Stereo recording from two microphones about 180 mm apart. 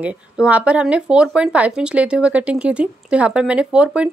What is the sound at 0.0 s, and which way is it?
Speech, 5° right (ahead or behind).